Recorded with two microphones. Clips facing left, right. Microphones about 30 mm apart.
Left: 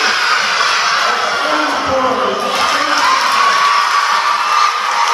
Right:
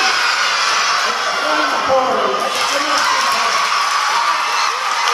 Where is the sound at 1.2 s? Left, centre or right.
Left.